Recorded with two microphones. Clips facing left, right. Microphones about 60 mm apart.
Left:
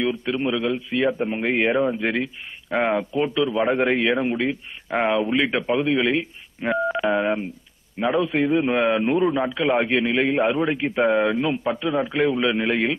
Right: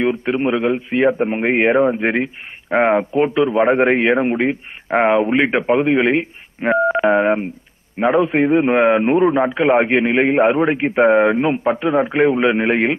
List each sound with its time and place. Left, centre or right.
0.0 s a man's voice: right
5.9 s speech: right
6.6 s a man's voice: right
12.5 s speech: right